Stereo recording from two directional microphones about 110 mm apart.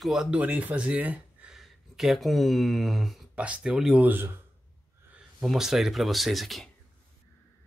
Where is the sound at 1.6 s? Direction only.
Centre (ahead or behind).